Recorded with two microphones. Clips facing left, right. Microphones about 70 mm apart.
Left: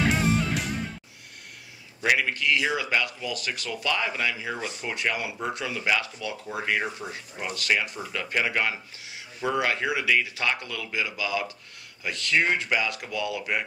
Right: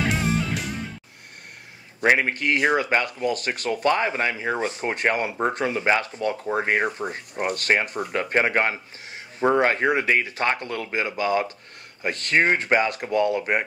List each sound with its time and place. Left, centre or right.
0.0 s music: centre
2.0 s speech: right